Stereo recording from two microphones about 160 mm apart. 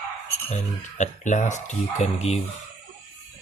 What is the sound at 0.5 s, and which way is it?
Speech, 50° left (ahead or behind).